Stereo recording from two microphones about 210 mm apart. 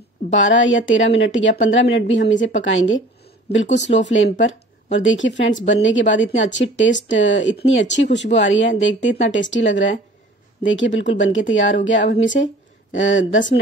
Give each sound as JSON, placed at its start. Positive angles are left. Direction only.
{"t": 0.3, "sound": "speech", "side_deg": 65}